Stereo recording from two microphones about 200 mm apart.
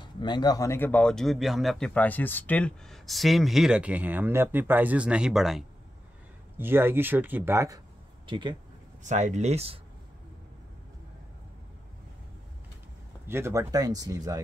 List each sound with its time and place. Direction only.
0.0 s speech: 20° left (ahead or behind); by 8.5 s 25° right (ahead or behind)
9.0 s speech: 35° right (ahead or behind)
13.3 s speech: 15° right (ahead or behind)